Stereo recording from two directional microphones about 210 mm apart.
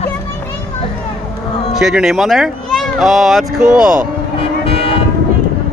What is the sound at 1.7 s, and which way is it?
Speech, centre (ahead or behind).